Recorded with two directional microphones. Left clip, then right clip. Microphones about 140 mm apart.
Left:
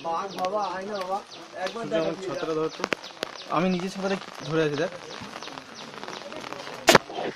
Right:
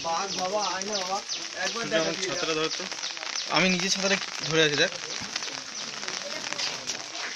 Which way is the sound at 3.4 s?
Centre (ahead or behind).